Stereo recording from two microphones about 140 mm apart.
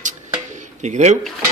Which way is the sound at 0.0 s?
60° right (ahead or behind).